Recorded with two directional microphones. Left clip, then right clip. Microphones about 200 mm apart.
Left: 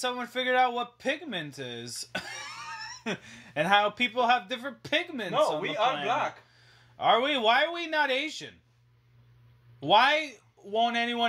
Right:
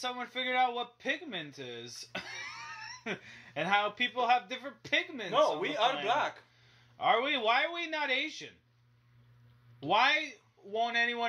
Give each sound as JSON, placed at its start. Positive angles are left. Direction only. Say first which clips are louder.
{"t": 0.0, "sound": "speech", "louder": "left 5 dB", "side_deg": 35}
{"t": 5.3, "sound": "speech", "louder": "left 1 dB", "side_deg": -35}
{"t": 7.0, "sound": "speech", "louder": "left 4 dB", "side_deg": 35}
{"t": 9.8, "sound": "speech", "louder": "left 5 dB", "side_deg": 35}